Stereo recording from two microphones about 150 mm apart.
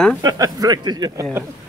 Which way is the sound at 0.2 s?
25° right (ahead or behind).